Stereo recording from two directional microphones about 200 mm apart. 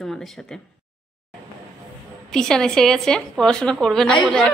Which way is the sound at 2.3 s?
5° left (ahead or behind).